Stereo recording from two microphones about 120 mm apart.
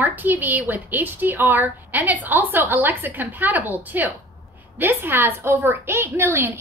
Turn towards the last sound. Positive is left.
turn(degrees=-20)  # may be behind; listen again after turning